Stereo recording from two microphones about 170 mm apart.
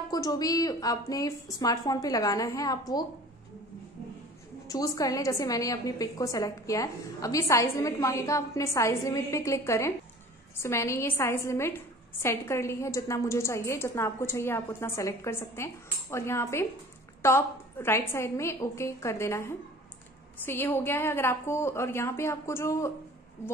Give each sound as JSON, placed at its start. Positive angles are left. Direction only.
{"t": 0.1, "sound": "a woman's voice", "side_deg": 20}
{"t": 4.6, "sound": "a woman's voice", "side_deg": 20}